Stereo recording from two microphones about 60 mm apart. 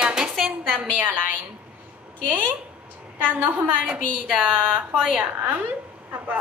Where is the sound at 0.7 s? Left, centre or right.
Right.